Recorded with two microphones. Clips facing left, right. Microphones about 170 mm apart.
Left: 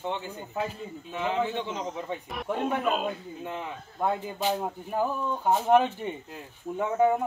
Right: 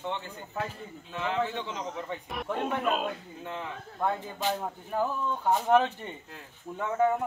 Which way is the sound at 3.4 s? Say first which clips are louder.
Left 1 dB; 15° left (ahead or behind).